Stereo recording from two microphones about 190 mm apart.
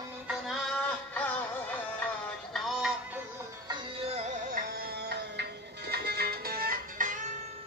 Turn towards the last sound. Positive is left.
turn(degrees=-45)  # may be behind; listen again after turning